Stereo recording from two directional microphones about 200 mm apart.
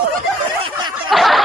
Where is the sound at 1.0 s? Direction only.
Centre (ahead or behind).